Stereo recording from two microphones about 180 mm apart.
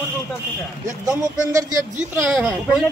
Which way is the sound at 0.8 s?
15° right (ahead or behind).